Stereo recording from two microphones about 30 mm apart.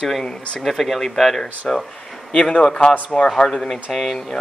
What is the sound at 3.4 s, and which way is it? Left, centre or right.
Speech, left.